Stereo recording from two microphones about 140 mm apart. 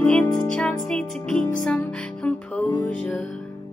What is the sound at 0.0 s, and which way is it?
Music, 10° left (ahead or behind).